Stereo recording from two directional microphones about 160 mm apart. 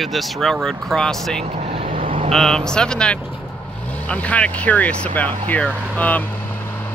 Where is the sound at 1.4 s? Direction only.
35° right (ahead or behind).